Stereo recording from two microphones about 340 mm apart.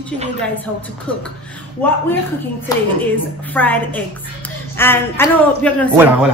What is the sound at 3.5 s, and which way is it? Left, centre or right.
Speech, centre.